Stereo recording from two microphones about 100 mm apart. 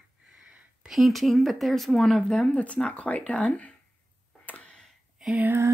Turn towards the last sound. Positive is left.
turn(degrees=-20)  # may be behind; listen again after turning